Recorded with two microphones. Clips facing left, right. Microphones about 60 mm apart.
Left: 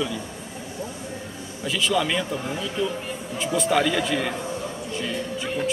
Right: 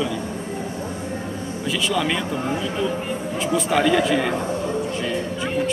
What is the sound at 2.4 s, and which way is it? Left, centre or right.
Speech, centre.